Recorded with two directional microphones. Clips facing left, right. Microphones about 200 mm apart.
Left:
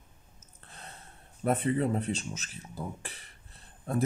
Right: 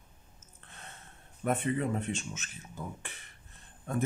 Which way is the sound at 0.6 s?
35° left (ahead or behind).